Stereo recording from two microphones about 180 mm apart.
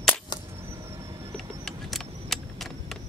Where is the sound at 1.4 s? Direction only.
Centre (ahead or behind).